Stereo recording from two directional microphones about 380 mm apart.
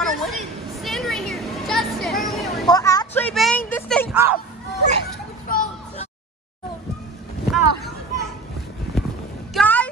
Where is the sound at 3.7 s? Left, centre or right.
Centre.